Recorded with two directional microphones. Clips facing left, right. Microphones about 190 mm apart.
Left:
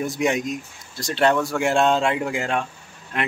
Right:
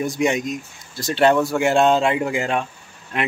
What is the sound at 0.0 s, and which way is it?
Speech, centre (ahead or behind).